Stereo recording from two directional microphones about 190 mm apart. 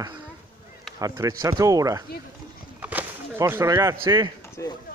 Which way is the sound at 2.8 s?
10° right (ahead or behind).